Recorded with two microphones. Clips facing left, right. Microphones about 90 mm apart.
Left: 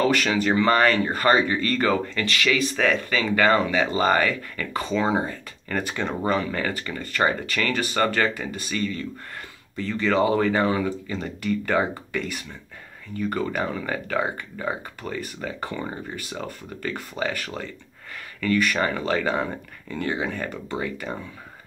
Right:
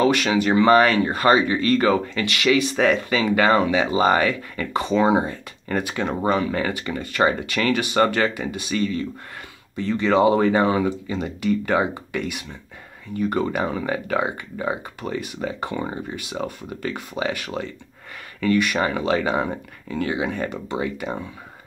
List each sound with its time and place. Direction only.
0.0 s speech: 10° right (ahead or behind)